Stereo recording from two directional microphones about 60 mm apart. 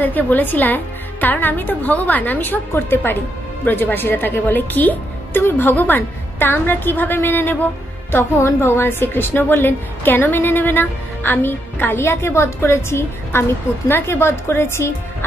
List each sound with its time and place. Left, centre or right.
0.0 s a woman's voice: left
8.1 s a woman's voice: left